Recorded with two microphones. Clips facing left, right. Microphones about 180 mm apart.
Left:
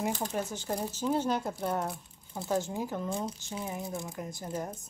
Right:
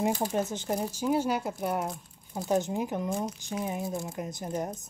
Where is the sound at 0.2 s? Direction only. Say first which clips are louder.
Right 4 dB; 25° right (ahead or behind).